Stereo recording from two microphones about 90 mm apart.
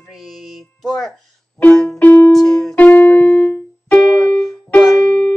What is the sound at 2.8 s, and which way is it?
Music, 20° left (ahead or behind).